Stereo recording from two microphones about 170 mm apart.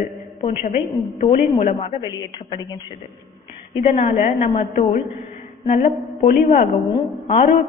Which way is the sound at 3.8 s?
40° left (ahead or behind).